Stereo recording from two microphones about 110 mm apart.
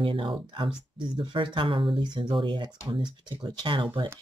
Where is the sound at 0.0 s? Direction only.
50° right (ahead or behind).